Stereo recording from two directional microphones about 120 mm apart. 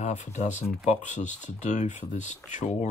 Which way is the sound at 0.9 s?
90° left.